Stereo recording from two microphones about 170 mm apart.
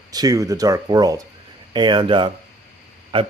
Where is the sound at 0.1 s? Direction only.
20° right (ahead or behind).